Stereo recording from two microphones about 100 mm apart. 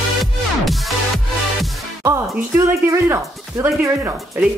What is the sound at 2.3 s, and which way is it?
Speech, 25° right (ahead or behind).